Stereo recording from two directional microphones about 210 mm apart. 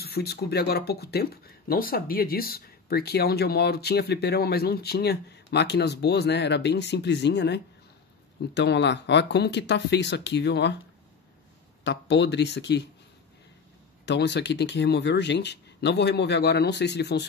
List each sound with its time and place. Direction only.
0.0 s speech: 50° left (ahead or behind)
11.8 s speech: 55° left (ahead or behind)
14.0 s speech: 55° left (ahead or behind)